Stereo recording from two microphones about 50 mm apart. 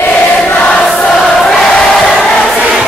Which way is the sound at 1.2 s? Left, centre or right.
Centre.